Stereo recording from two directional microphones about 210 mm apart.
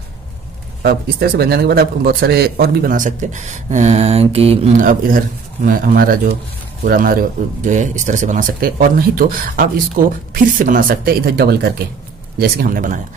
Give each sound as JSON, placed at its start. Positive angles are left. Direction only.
{"t": 0.8, "sound": "a man's voice", "side_deg": -45}